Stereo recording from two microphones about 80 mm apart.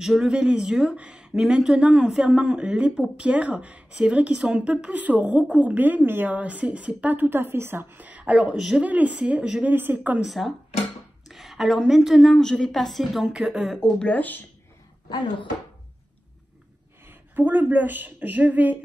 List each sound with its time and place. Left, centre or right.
0.0 s speech: centre
8.8 s a woman's voice: centre
10.2 s a woman's voice: centre
13.7 s speech: centre
14.1 s speech: left
15.0 s speech: left
17.1 s a woman's voice: right